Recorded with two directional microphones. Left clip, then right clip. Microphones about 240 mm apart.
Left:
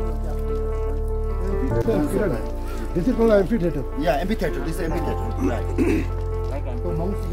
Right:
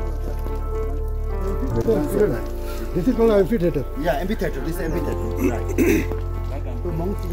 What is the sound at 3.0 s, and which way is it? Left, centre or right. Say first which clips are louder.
Speech: right 1 dB; right.